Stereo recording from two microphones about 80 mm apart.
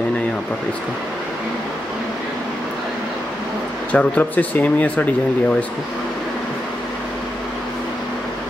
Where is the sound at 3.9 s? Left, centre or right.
Centre.